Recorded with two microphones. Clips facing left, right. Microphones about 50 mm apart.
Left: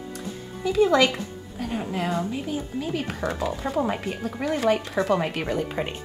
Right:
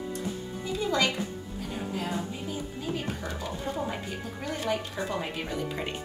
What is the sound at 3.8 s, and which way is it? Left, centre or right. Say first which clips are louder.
Speech: left 7 dB; left.